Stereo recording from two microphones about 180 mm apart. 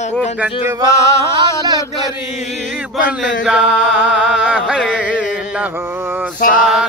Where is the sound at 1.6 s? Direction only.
20° right (ahead or behind).